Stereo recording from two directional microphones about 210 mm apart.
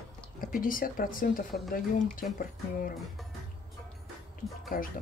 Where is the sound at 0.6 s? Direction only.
40° left (ahead or behind).